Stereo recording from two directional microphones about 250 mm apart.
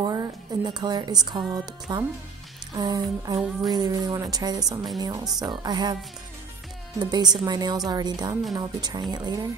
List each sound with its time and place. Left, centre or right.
0.0 s speech: centre
7.0 s speech: centre